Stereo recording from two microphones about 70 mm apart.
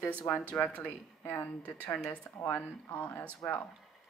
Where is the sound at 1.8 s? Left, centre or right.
Centre.